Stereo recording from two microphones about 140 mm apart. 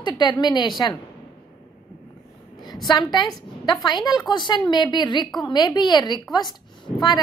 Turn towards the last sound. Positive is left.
turn(degrees=30)  # may be behind; listen again after turning